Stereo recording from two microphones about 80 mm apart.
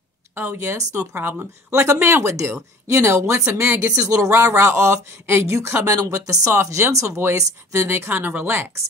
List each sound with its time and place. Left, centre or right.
0.3 s speech: right